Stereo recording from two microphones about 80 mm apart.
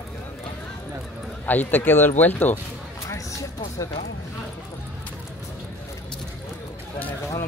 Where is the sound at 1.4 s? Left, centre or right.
Left.